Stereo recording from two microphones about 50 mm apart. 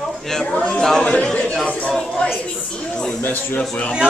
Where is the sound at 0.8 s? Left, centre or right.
Centre.